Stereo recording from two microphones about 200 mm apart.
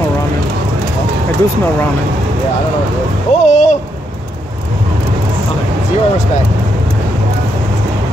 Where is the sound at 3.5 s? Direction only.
35° left (ahead or behind).